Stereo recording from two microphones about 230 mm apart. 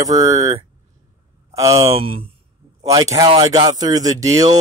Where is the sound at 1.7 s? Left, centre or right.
Right.